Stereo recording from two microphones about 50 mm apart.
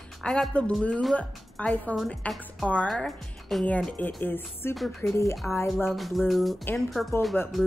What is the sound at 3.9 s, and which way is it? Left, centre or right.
Speech, left.